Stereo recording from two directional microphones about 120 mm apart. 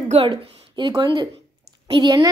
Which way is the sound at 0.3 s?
40° right (ahead or behind).